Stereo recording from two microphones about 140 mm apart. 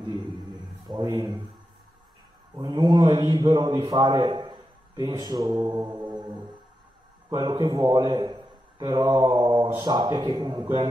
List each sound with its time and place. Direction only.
0.9 s speech: 30° right (ahead or behind)
2.5 s a man's voice: 30° right (ahead or behind)